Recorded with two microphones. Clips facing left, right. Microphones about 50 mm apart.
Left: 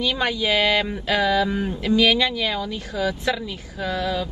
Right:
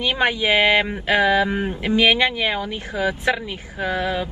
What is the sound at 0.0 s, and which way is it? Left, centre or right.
Speech, right.